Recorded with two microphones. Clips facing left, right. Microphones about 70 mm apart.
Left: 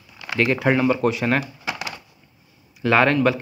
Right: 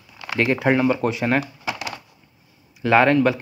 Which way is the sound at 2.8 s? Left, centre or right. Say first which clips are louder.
Right 1 dB; centre.